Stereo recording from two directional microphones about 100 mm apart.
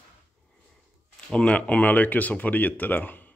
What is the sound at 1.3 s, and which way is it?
Speech, 10° left (ahead or behind).